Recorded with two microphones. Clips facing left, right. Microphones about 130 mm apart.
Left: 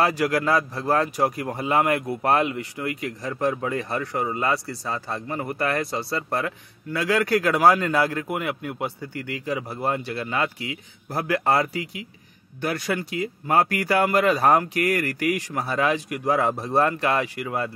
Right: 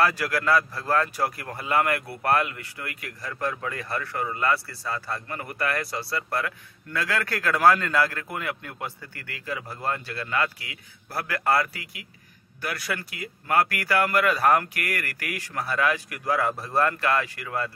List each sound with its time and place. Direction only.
0.0 s a man's voice: 20° left (ahead or behind)